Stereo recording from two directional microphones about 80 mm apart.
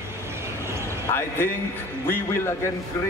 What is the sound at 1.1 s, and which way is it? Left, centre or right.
A man's voice, left.